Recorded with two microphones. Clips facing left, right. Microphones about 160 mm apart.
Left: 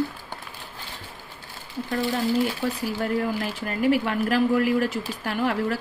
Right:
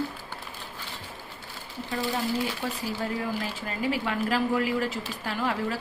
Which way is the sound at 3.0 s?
55° left (ahead or behind).